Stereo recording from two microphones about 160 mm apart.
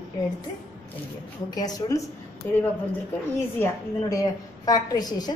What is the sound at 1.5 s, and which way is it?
A woman's voice, 25° left (ahead or behind).